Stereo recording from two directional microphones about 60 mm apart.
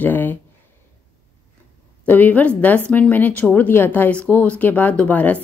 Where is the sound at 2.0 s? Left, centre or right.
Left.